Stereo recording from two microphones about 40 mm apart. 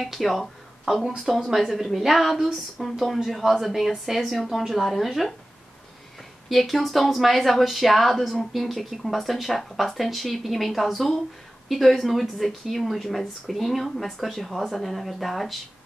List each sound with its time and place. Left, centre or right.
0.0 s speech: centre
6.5 s speech: centre